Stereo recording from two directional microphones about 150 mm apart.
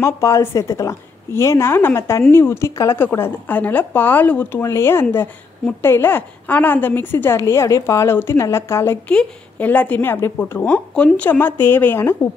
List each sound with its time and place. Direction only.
0.0 s a woman's voice: 20° left (ahead or behind)